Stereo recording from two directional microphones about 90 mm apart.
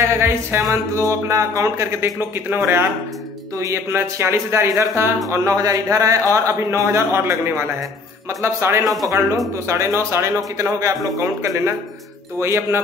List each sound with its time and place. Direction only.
0.0 s music: 30° right (ahead or behind)
0.7 s music: 40° right (ahead or behind)
1.2 s a man's voice: 30° right (ahead or behind)